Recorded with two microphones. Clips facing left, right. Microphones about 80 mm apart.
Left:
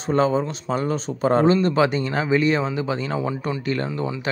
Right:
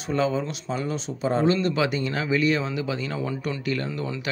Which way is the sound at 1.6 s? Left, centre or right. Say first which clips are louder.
Left 4 dB; left.